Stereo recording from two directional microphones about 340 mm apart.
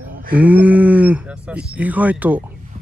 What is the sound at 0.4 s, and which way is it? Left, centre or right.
Speech, centre.